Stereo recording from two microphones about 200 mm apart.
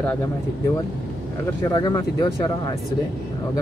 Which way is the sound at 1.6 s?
20° left (ahead or behind).